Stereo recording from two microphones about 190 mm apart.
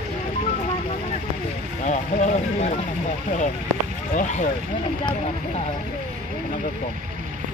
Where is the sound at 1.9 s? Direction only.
40° left (ahead or behind).